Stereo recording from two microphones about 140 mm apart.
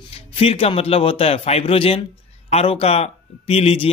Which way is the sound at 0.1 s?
45° left (ahead or behind).